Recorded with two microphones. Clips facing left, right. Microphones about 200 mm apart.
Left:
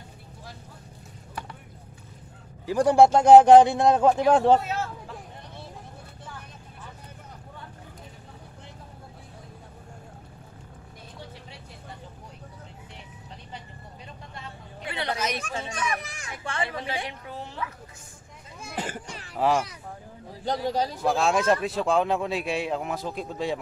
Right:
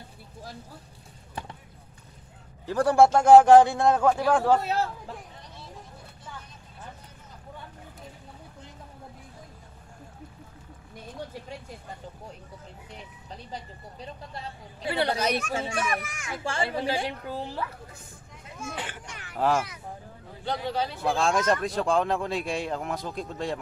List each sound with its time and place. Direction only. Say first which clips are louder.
2.6 s a man's voice: left 2 dB; 15° left (ahead or behind)
11.1 s vehicle: right 7 dB; 45° right (ahead or behind)
14.3 s vehicle: right 2 dB; 35° right (ahead or behind)
15.6 s a woman's voice: right 2 dB; 30° right (ahead or behind)
16.0 s a child's voice: right 1 dB; 35° left (ahead or behind)
16.4 s a woman's voice: right 3 dB; 30° right (ahead or behind)
18.6 s a sound: left 3 dB; 35° left (ahead or behind)
19.3 s a child's voice: left 1 dB; centre (ahead or behind)
20.4 s speech: left 3 dB; 40° left (ahead or behind)
21.0 s speech: left 1 dB; 5° left (ahead or behind)